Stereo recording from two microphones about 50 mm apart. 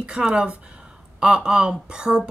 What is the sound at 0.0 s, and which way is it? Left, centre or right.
Speech, centre.